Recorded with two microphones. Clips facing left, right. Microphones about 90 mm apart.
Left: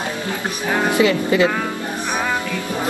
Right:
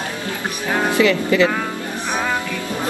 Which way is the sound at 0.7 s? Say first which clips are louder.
Even; 20° left (ahead or behind).